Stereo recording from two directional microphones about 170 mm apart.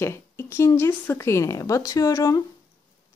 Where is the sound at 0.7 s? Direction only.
15° left (ahead or behind).